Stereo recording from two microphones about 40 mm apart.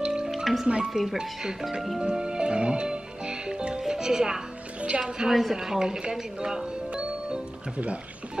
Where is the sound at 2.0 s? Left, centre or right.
Centre.